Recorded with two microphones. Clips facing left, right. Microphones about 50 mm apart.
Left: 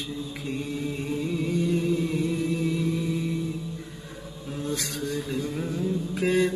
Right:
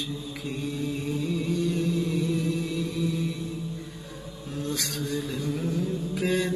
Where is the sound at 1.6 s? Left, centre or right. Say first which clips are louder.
Left 2 dB; left.